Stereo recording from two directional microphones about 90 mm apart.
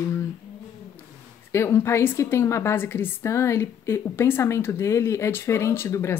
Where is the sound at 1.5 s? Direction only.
30° left (ahead or behind).